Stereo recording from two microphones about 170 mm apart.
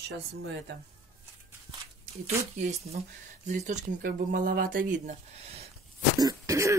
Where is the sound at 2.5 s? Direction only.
45° right (ahead or behind).